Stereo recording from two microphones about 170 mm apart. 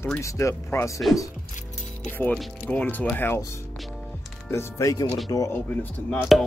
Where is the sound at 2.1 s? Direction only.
10° left (ahead or behind).